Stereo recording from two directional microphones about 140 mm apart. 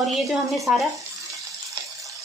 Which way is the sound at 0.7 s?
10° right (ahead or behind).